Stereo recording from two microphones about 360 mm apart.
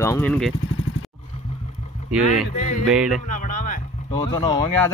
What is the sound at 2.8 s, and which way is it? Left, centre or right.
Speech, centre.